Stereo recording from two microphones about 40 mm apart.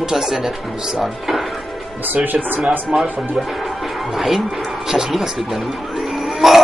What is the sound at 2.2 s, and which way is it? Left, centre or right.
Speech, right.